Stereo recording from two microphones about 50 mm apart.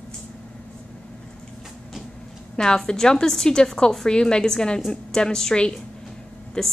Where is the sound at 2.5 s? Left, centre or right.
Centre.